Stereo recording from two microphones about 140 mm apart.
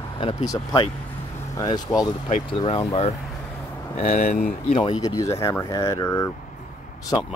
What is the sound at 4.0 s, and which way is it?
Speech, 60° left (ahead or behind).